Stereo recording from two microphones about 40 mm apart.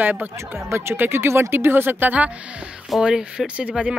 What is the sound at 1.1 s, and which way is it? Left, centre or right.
Speech, right.